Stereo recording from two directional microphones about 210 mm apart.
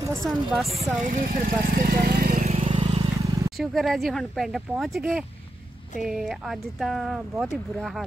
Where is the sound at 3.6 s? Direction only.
Centre (ahead or behind).